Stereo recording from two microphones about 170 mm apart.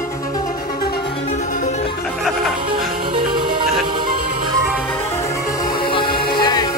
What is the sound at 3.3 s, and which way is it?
Music, 25° right (ahead or behind).